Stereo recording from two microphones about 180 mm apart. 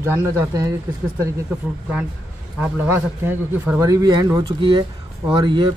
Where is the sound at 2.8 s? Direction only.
10° right (ahead or behind).